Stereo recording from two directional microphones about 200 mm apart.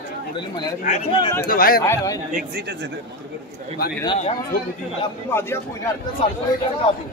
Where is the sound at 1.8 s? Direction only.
15° left (ahead or behind).